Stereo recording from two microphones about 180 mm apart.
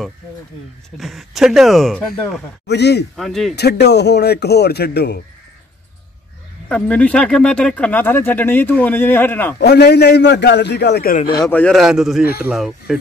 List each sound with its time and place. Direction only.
0.9 s speech: centre (ahead or behind)
2.6 s a man's voice: 70° left (ahead or behind)
3.2 s speech: centre (ahead or behind)
3.5 s speech: 65° left (ahead or behind)
6.7 s speech: 5° left (ahead or behind)
9.6 s a man's voice: 65° left (ahead or behind)
11.3 s speech: 10° left (ahead or behind); by 12.9 s 5° right (ahead or behind)